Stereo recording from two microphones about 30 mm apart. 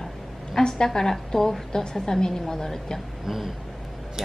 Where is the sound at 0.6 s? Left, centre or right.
Left.